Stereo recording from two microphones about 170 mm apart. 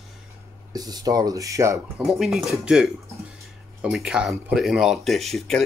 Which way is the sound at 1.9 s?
Centre (ahead or behind).